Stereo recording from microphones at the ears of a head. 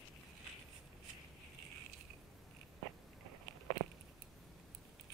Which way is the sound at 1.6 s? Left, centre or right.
Right.